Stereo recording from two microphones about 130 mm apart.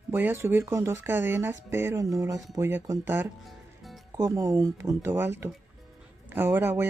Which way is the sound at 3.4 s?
Centre (ahead or behind).